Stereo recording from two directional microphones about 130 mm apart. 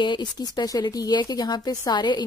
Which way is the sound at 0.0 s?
35° left (ahead or behind).